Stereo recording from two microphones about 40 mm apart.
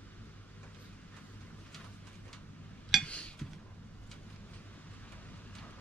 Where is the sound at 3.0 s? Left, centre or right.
Left.